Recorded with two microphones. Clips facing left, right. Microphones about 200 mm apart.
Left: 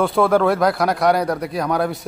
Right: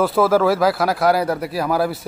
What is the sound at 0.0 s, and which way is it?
A man's voice, 5° right (ahead or behind).